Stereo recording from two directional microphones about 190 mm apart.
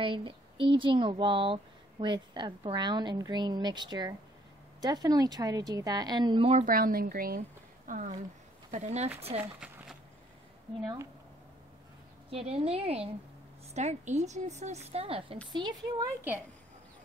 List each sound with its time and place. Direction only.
0.0 s speech: 25° right (ahead or behind)
6.6 s a woman's voice: 50° right (ahead or behind)
9.4 s speech: 5° right (ahead or behind)
12.3 s a woman's voice: 30° right (ahead or behind)